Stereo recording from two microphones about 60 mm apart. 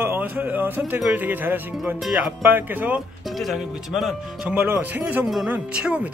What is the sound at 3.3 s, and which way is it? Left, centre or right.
Speech, centre.